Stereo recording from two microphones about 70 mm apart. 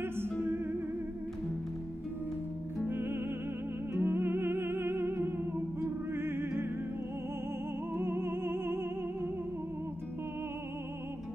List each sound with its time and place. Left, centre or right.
2.9 s music: right
7.9 s music: right